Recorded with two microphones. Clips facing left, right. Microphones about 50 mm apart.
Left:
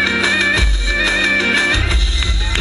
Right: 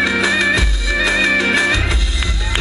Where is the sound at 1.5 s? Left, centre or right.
Right.